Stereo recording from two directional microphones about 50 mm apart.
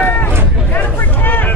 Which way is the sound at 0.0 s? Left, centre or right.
Left.